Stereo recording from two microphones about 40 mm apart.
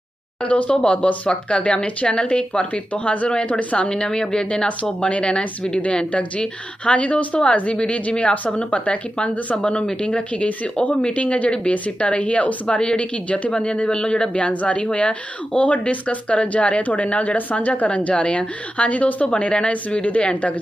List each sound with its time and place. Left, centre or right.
0.4 s speech: left
3.7 s a woman's voice: centre
5.0 s a woman's voice: left